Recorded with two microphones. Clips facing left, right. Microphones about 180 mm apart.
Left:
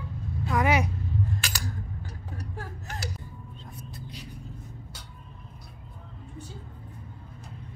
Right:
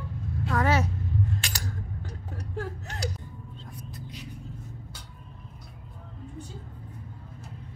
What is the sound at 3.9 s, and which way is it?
Vehicle, 35° left (ahead or behind).